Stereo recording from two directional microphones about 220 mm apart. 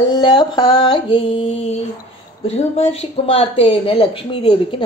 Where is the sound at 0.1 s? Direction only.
20° left (ahead or behind).